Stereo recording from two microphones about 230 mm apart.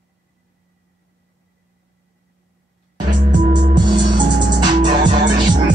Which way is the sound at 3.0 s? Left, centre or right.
Right.